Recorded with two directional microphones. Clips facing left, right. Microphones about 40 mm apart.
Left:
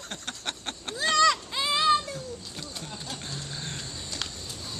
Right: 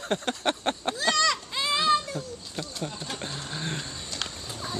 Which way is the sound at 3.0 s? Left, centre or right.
Right.